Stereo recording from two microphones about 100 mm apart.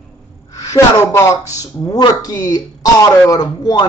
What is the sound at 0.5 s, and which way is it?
Speech, 35° left (ahead or behind).